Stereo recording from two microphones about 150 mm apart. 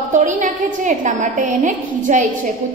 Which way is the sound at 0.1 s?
60° right (ahead or behind).